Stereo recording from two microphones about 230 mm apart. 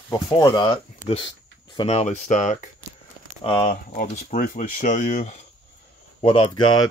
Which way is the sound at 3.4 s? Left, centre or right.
Left.